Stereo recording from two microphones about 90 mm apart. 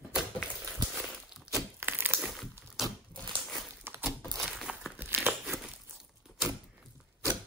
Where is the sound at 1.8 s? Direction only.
25° right (ahead or behind).